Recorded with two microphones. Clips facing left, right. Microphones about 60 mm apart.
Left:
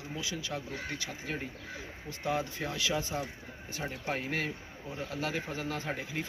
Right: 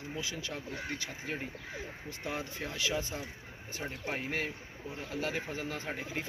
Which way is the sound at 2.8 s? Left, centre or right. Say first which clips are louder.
Left 1 dB; right.